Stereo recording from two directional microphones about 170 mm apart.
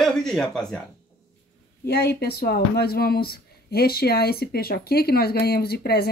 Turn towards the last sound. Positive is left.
turn(degrees=65)  # may be behind; listen again after turning